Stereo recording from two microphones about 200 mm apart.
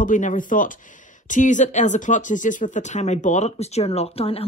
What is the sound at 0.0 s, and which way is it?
A man's voice, 40° left (ahead or behind).